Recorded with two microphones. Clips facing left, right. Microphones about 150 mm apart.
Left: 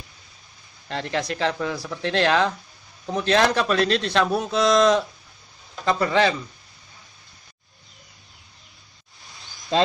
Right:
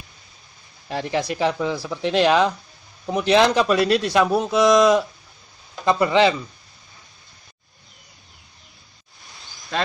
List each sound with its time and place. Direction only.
0.8 s a man's voice: 15° right (ahead or behind)
9.7 s speech: 20° left (ahead or behind)